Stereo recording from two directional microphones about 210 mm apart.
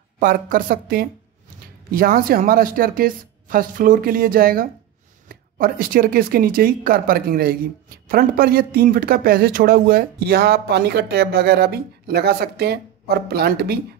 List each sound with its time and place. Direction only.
0.2 s a man's voice: 40° right (ahead or behind)